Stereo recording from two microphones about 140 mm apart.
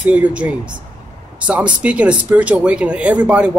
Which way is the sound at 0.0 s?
10° right (ahead or behind).